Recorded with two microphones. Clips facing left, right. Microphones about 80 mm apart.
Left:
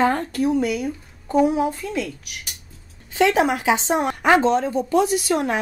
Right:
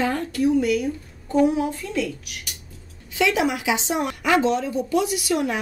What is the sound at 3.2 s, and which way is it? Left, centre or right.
A woman's voice, left.